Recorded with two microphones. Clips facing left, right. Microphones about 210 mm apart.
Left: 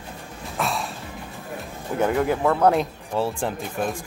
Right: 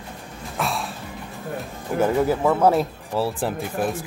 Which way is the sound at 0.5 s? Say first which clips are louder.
Even; centre (ahead or behind).